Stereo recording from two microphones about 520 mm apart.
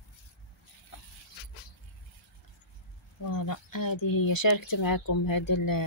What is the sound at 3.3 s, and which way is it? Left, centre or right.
Speech, left.